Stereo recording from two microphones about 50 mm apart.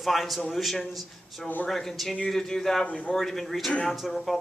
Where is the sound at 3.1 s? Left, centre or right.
Centre.